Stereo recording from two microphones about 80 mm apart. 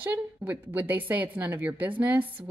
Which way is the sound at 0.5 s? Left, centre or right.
Right.